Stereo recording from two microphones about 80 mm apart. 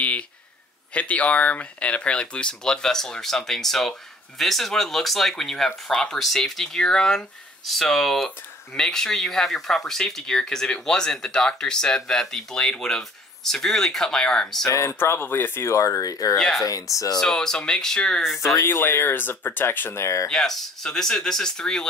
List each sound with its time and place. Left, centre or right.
0.0 s a sound: centre
0.9 s speech: centre
14.7 s speech: left
16.3 s speech: centre
16.9 s speech: left
17.2 s speech: centre
18.4 s speech: left
20.2 s speech: centre